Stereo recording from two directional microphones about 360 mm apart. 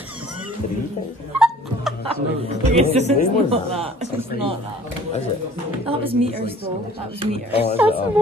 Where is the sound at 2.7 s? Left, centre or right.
Centre.